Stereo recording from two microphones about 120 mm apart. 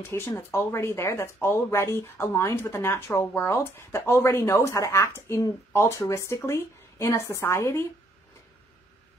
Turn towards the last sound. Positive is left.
turn(degrees=25)  # may be behind; listen again after turning